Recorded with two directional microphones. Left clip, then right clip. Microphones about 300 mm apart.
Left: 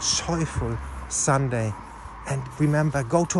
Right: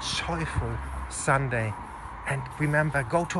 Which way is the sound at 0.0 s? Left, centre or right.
Left.